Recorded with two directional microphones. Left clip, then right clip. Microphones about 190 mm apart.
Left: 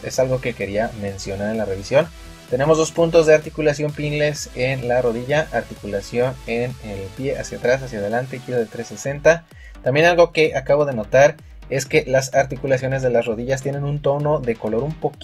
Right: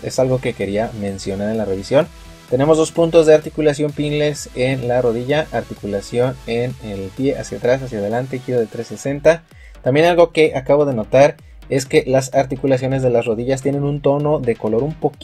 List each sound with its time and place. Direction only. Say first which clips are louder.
0.0 s speech: right 2 dB; 35° right (ahead or behind)